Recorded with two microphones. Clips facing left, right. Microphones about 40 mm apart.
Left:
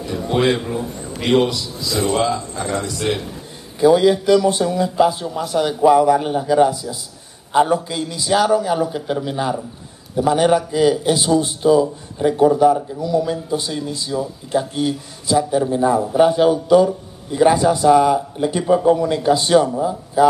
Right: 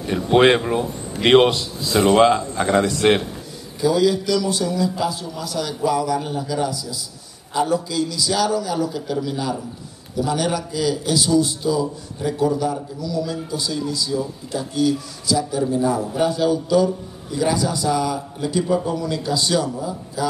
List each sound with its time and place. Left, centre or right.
0.1 s a man's voice: right
2.0 s a man's voice: right
3.8 s a man's voice: left